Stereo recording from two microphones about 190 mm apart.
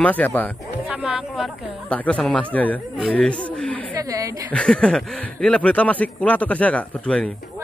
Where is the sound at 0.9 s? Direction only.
5° right (ahead or behind).